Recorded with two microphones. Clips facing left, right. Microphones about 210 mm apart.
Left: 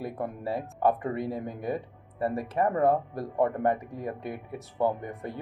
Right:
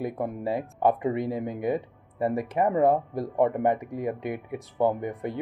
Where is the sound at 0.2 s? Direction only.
15° right (ahead or behind).